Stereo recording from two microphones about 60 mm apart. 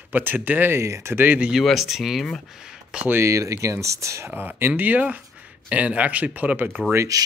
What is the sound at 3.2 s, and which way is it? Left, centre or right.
Speech, right.